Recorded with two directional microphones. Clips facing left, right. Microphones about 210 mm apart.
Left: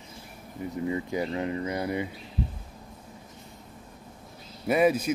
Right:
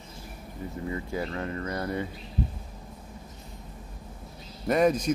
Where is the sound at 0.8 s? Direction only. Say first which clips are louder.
Left 3 dB; 20° left (ahead or behind).